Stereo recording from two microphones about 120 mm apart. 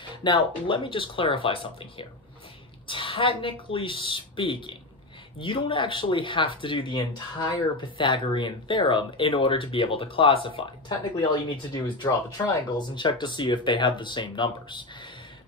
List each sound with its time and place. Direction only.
0.1 s speech: 40° left (ahead or behind)